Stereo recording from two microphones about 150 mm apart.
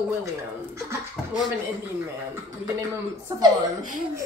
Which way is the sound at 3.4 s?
25° right (ahead or behind).